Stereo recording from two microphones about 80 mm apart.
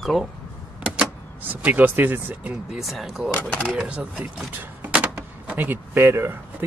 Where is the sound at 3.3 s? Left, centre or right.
Left.